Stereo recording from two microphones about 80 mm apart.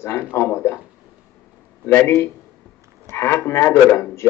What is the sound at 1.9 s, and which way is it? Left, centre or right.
A man's voice, left.